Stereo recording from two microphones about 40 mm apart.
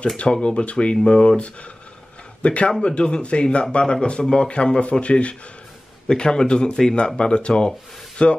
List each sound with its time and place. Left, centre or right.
0.2 s a man's voice: left